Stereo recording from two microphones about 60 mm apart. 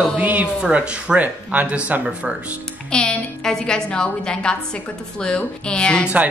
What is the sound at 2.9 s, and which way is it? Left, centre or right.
A woman's voice, centre.